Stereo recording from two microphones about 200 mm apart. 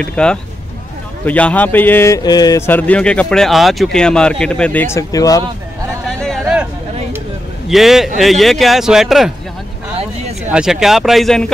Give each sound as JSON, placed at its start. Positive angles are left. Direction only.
{"t": 0.0, "sound": "speech", "side_deg": 5}
{"t": 6.0, "sound": "a sound", "side_deg": 0}
{"t": 7.6, "sound": "speech", "side_deg": 0}
{"t": 10.5, "sound": "speech", "side_deg": -5}